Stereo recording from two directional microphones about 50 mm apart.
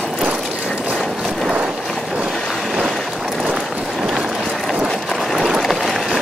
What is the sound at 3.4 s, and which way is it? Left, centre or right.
Run, centre.